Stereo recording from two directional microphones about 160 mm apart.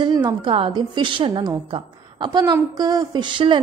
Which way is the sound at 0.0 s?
25° right (ahead or behind).